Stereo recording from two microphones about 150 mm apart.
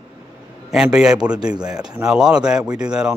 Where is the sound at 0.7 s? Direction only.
5° right (ahead or behind).